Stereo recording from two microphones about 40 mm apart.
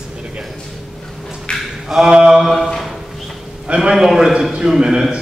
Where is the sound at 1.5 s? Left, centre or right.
Left.